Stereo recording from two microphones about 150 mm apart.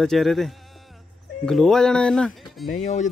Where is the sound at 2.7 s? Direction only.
55° left (ahead or behind).